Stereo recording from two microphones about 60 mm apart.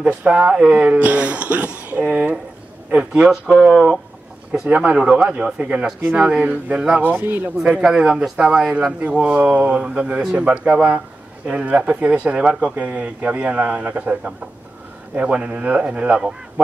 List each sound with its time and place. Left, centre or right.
0.0 s speech: right
7.1 s speech: right
7.5 s speech: centre